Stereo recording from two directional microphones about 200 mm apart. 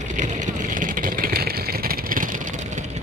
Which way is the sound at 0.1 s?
40° right (ahead or behind).